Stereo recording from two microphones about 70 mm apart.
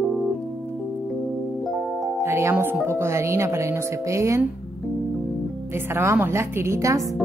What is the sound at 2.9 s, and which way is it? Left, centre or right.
A woman's voice, right.